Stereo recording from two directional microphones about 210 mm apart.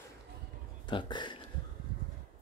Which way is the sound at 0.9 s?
20° left (ahead or behind).